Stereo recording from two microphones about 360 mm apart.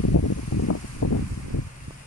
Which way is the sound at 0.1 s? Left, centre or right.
Left.